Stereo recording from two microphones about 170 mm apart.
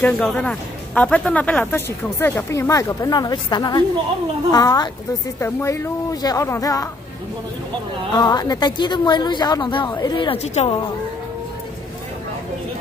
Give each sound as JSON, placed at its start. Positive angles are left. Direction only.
{"t": 0.0, "sound": "speech", "side_deg": 5}
{"t": 8.2, "sound": "speech", "side_deg": 25}